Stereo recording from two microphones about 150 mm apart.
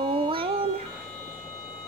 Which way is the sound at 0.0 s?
35° right (ahead or behind).